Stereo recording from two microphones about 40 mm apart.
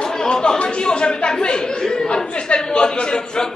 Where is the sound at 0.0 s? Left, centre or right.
Centre.